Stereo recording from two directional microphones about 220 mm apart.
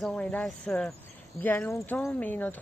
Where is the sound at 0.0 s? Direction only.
Centre (ahead or behind).